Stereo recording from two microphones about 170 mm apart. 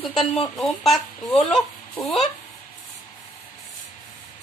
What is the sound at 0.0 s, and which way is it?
Speech, centre (ahead or behind).